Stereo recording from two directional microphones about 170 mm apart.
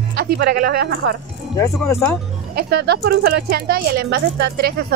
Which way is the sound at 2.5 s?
70° right (ahead or behind).